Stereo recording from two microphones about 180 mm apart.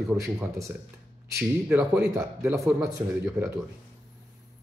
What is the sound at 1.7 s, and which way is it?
Speech, 10° right (ahead or behind).